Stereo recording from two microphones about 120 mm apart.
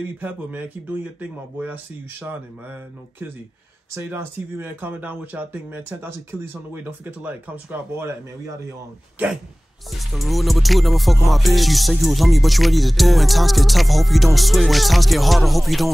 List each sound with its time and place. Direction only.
0.2 s speech: 15° right (ahead or behind)
3.9 s speech: 20° right (ahead or behind)
9.2 s speech: 15° right (ahead or behind)
9.8 s music: centre (ahead or behind)